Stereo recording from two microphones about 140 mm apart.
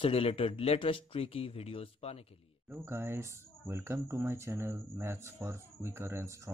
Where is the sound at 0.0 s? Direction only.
40° left (ahead or behind).